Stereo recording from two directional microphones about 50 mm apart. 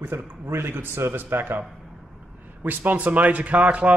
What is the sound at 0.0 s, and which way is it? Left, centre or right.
Speech, right.